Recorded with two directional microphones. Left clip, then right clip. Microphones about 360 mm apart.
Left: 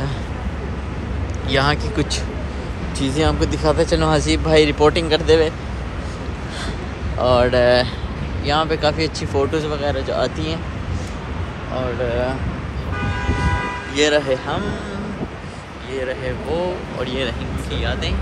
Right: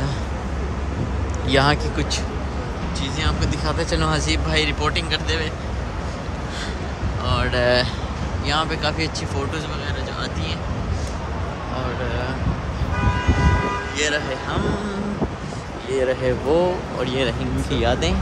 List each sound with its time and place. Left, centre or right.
1.5 s speech: centre
7.2 s speech: centre
13.9 s speech: centre
15.9 s speech: centre